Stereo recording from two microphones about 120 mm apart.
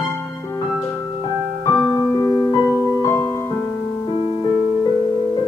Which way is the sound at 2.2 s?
30° left (ahead or behind).